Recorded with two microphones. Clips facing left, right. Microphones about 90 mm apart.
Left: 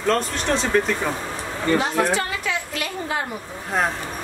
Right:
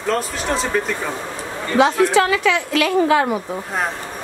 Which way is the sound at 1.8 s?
90° right.